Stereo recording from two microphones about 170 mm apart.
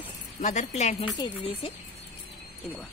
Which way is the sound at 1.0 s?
30° left (ahead or behind).